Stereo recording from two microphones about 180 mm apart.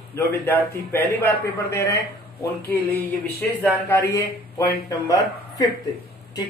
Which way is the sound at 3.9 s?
15° left (ahead or behind).